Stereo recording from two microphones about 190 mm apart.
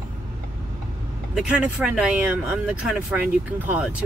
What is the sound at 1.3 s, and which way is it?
Speech, 5° right (ahead or behind).